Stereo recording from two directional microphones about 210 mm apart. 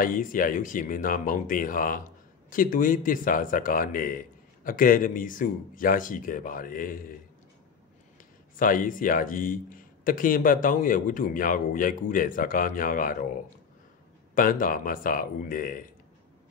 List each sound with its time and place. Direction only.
0.0 s speech: 40° left (ahead or behind)
8.5 s speech: 40° left (ahead or behind)
14.3 s speech: 40° left (ahead or behind)